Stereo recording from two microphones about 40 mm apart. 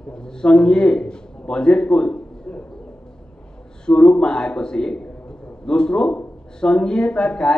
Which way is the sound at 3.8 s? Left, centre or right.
Left.